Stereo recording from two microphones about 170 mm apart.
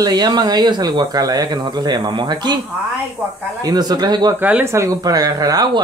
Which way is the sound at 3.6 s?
20° right (ahead or behind).